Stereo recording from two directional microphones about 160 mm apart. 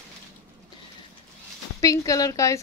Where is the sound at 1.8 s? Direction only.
20° left (ahead or behind).